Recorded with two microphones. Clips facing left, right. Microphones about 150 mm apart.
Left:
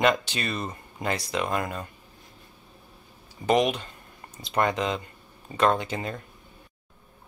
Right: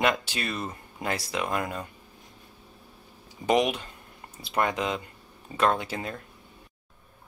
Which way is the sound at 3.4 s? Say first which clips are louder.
Left 1 dB; 10° right (ahead or behind).